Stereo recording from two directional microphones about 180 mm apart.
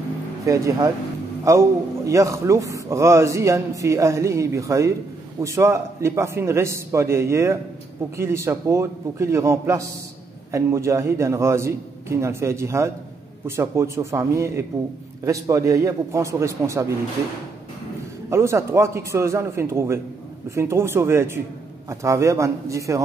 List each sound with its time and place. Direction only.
0.5 s a man's voice: 20° right (ahead or behind)
18.3 s a man's voice: 15° right (ahead or behind)